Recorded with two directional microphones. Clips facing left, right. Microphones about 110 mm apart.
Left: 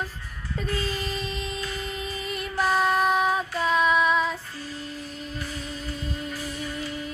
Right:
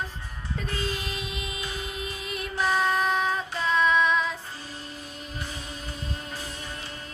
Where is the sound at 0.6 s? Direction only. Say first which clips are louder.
Left 3 dB; centre (ahead or behind).